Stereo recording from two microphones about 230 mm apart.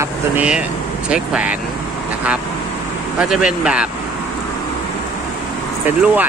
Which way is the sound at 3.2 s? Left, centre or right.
Centre.